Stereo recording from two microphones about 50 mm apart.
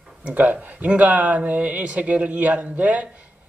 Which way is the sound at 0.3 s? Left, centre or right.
Right.